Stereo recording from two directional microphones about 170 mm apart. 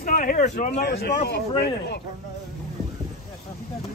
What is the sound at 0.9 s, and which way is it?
Speech, 75° left (ahead or behind).